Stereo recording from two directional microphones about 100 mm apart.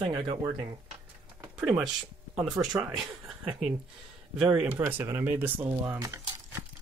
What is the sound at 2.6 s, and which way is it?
Speech, 20° right (ahead or behind).